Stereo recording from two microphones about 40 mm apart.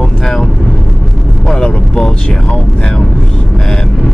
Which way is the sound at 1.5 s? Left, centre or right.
Centre.